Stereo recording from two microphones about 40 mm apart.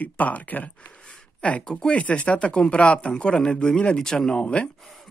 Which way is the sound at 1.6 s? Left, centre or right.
Centre.